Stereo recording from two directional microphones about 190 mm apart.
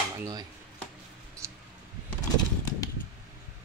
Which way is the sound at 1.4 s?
15° right (ahead or behind).